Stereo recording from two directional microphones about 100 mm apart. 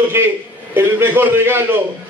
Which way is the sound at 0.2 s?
25° right (ahead or behind).